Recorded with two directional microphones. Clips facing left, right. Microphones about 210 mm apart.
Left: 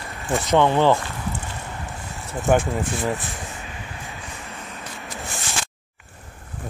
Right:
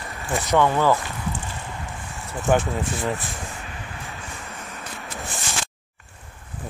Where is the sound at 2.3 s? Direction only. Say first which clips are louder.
Left 1 dB; 20° left (ahead or behind).